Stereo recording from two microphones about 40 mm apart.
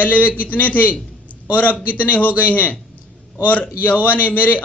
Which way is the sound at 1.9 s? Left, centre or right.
Left.